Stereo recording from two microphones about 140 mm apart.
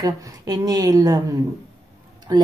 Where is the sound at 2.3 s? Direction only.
30° right (ahead or behind).